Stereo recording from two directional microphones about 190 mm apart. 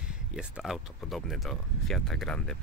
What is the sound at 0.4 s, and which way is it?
Speech, centre (ahead or behind).